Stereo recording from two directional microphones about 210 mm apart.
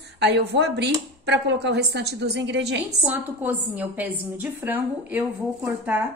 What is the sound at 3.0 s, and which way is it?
A woman's voice, 10° right (ahead or behind).